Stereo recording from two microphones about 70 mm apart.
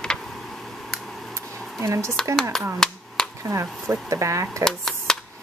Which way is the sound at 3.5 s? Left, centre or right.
Right.